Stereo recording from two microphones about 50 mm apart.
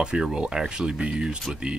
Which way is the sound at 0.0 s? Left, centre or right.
Centre.